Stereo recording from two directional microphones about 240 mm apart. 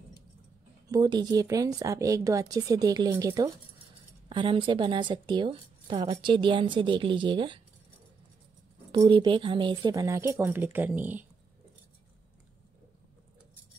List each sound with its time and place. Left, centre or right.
0.8 s a woman's voice: centre
9.0 s speech: centre